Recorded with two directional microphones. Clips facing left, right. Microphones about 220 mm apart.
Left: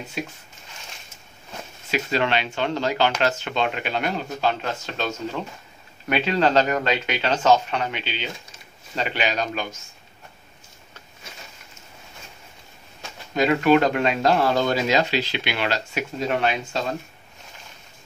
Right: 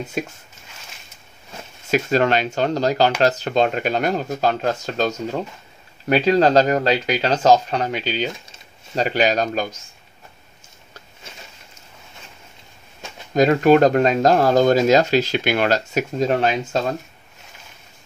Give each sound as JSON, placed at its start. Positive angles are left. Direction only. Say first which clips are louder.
{"t": 0.2, "sound": "speech", "louder": "right 4 dB", "side_deg": -50}
{"t": 1.9, "sound": "speech", "louder": "right 6 dB", "side_deg": -45}
{"t": 13.3, "sound": "speech", "louder": "right 4 dB", "side_deg": -40}